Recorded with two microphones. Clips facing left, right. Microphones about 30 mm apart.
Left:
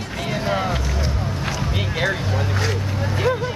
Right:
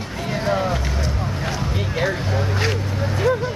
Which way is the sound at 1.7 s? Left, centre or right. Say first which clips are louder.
Even; left.